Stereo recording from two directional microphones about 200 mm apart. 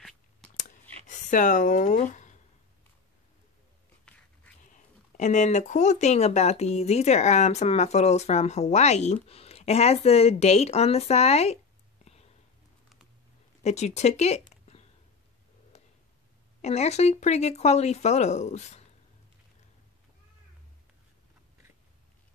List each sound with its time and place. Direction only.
0.6 s a sound: 40° left (ahead or behind)
4.6 s speech: 40° left (ahead or behind)
12.0 s whispering: 30° left (ahead or behind)
13.6 s speech: 35° left (ahead or behind)
14.4 s a sound: 30° left (ahead or behind)
16.6 s speech: 35° left (ahead or behind)